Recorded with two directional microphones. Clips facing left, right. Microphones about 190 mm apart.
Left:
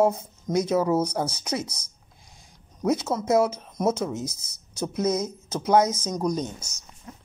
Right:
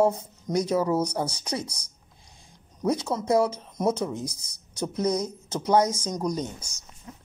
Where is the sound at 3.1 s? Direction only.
20° left (ahead or behind).